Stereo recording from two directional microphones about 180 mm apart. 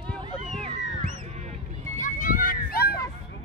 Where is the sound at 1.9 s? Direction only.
45° left (ahead or behind).